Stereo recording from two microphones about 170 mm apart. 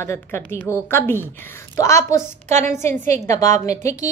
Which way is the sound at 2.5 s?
45° right (ahead or behind).